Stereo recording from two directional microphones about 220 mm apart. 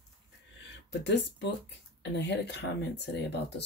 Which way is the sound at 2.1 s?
50° left (ahead or behind).